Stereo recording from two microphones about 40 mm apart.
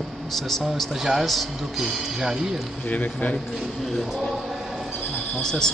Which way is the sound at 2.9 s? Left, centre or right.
Left.